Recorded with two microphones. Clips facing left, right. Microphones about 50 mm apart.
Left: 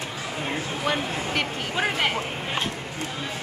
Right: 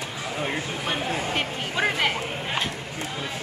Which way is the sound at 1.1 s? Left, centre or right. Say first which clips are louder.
Even; centre.